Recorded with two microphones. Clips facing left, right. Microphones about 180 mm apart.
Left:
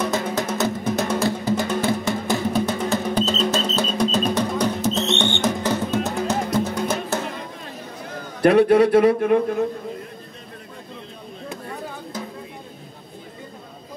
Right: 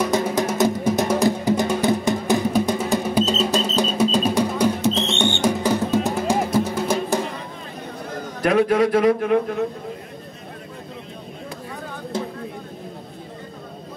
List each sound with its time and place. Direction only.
0.0 s music: 15° right (ahead or behind)
8.4 s speech: 30° left (ahead or behind)